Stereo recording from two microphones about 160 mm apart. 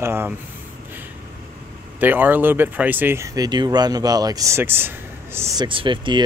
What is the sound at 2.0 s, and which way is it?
Speech, 10° right (ahead or behind).